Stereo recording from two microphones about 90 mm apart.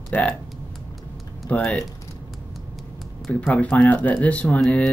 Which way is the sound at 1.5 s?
15° left (ahead or behind).